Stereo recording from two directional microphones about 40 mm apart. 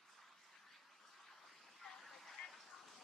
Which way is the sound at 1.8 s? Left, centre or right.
Centre.